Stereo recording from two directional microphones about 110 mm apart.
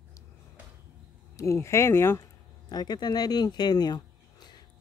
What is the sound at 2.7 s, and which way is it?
Speech, 40° left (ahead or behind).